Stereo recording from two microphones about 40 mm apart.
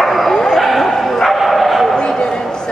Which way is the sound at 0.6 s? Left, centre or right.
Centre.